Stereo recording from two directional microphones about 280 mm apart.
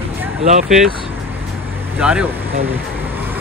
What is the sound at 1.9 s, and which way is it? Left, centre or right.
Speech, centre.